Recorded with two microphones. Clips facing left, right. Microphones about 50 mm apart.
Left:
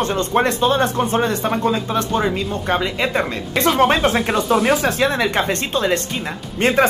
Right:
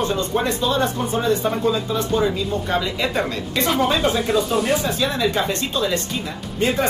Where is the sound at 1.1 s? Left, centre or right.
Left.